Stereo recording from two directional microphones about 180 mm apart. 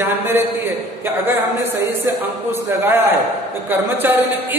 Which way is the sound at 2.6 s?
10° right (ahead or behind).